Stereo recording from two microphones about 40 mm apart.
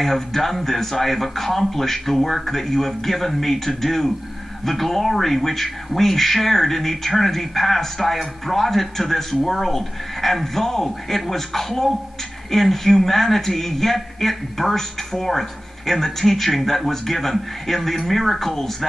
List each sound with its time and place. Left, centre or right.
0.0 s speech: centre